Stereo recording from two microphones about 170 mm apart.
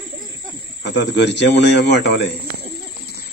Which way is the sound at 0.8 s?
90° left.